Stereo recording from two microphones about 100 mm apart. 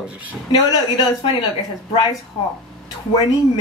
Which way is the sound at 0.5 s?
40° left (ahead or behind).